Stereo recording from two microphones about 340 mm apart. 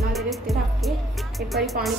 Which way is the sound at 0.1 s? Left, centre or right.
Centre.